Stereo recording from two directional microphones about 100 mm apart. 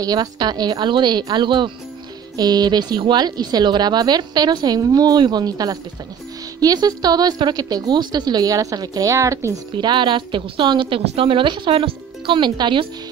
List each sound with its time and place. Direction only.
0.0 s speech: 40° right (ahead or behind)
9.8 s speech: 50° right (ahead or behind)